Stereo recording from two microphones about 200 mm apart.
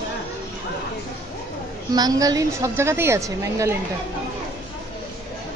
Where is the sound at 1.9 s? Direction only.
20° right (ahead or behind).